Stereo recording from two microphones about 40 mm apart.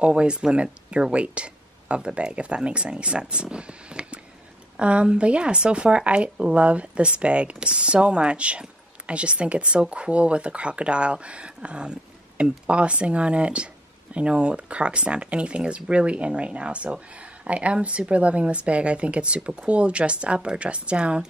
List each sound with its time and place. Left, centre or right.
0.0 s a woman's voice: right